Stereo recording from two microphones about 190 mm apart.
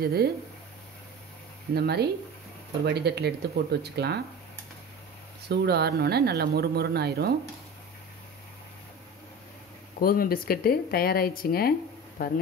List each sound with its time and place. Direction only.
0.0 s speech: 55° right (ahead or behind)
1.7 s speech: 60° right (ahead or behind)
5.5 s speech: 60° right (ahead or behind)
9.9 s speech: 50° left (ahead or behind)